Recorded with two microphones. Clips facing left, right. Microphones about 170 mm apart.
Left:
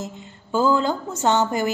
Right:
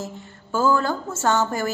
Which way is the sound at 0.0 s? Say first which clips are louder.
Even; 15° left (ahead or behind).